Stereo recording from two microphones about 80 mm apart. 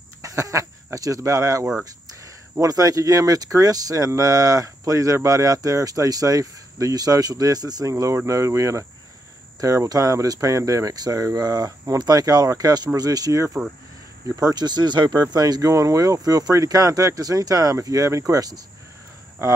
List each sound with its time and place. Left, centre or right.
0.2 s speech: right
9.8 s speech: right
14.5 s speech: right
15.3 s speech: right